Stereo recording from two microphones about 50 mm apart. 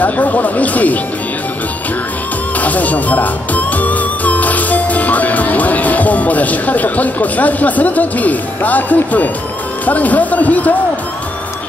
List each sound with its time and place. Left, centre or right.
0.0 s speech: left
2.6 s speech: left